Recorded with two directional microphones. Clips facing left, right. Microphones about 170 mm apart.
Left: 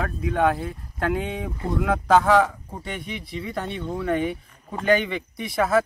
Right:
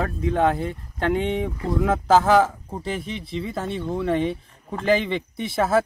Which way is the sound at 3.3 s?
25° right (ahead or behind).